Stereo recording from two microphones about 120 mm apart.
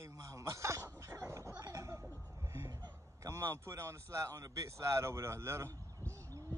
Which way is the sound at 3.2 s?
25° right (ahead or behind).